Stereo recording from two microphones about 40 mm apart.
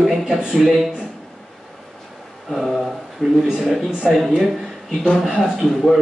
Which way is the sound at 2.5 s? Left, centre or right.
Centre.